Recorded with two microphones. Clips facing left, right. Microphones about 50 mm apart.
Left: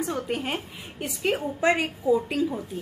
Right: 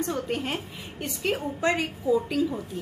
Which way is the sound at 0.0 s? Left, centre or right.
Centre.